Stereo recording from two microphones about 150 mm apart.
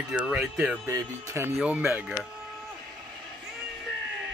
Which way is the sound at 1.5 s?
10° right (ahead or behind).